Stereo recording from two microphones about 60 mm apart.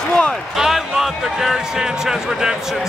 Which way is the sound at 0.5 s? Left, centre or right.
Centre.